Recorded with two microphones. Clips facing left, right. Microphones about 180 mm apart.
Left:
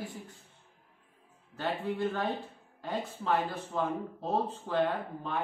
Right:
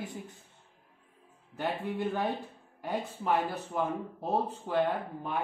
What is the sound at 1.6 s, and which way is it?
Speech, 15° right (ahead or behind).